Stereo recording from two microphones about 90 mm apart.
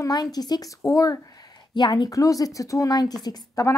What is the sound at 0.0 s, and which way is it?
A woman's voice, 45° left (ahead or behind).